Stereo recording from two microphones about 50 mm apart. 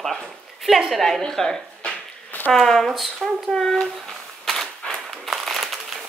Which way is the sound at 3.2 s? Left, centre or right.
Centre.